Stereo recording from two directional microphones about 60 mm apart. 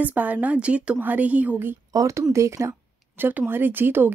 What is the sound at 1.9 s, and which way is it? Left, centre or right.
Speech, right.